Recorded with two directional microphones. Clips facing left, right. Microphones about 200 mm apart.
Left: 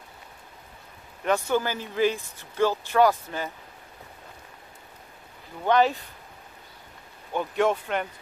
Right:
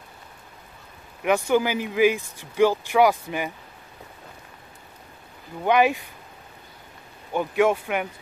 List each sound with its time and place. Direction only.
1.2 s speech: 15° right (ahead or behind)
5.6 s speech: 15° right (ahead or behind)
7.3 s speech: 10° right (ahead or behind)